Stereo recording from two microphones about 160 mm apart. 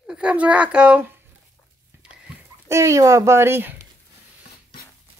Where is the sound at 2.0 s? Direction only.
5° right (ahead or behind).